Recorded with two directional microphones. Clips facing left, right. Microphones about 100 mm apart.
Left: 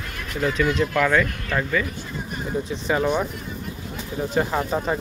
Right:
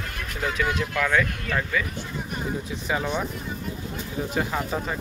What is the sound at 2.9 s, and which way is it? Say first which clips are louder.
Speech: left 5 dB; 5° right (ahead or behind).